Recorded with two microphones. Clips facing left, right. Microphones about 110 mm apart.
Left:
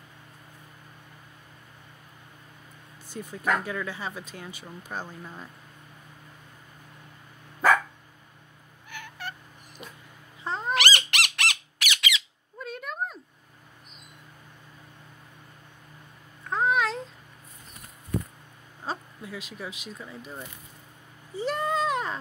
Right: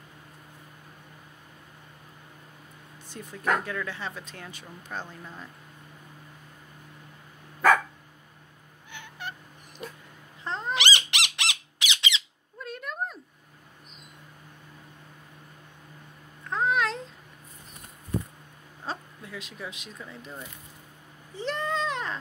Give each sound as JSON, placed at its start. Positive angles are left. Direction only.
{"t": 3.1, "sound": "speech", "side_deg": 5}
{"t": 8.9, "sound": "fowl", "side_deg": -20}
{"t": 9.8, "sound": "dog", "side_deg": 5}
{"t": 10.4, "sound": "cat", "side_deg": 5}
{"t": 10.8, "sound": "squawk", "side_deg": -15}
{"t": 12.5, "sound": "a sound", "side_deg": 0}
{"t": 16.4, "sound": "babbling", "side_deg": 5}
{"t": 18.9, "sound": "speech", "side_deg": 5}
{"t": 21.4, "sound": "a sound", "side_deg": 10}